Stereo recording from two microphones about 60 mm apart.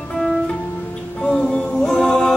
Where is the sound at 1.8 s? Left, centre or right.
Centre.